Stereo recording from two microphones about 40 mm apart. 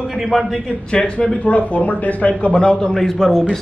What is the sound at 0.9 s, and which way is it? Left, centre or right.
Speech, left.